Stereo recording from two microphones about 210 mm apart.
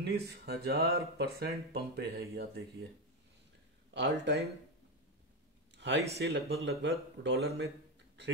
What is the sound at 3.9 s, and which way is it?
Speech, 55° right (ahead or behind).